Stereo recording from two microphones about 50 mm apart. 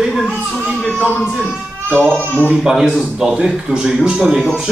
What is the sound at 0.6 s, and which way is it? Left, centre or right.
Speech, right.